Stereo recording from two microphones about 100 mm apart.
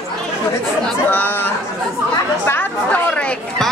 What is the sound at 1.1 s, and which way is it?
A woman's voice, 20° left (ahead or behind).